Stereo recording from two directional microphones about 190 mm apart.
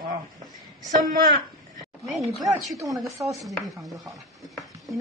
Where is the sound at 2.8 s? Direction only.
15° right (ahead or behind).